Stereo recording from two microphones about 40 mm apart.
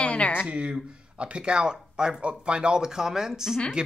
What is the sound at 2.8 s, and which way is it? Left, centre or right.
Speech, centre.